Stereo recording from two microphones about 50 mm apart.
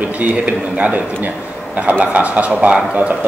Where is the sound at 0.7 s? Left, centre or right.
Right.